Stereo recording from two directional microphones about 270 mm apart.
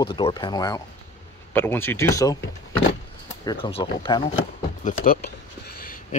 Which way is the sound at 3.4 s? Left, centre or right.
Centre.